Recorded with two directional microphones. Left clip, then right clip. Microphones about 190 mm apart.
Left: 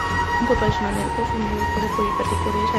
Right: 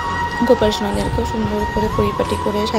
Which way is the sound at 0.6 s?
20° right (ahead or behind).